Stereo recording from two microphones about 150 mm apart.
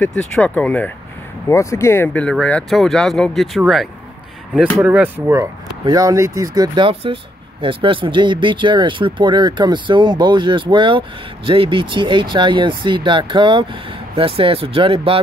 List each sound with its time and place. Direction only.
0.0 s speech: 5° left (ahead or behind); by 15.2 s 35° right (ahead or behind)